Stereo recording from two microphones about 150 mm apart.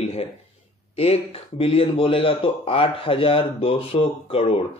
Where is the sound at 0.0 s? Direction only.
45° left (ahead or behind).